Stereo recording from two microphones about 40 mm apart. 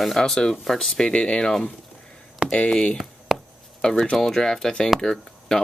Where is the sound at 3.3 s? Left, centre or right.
Centre.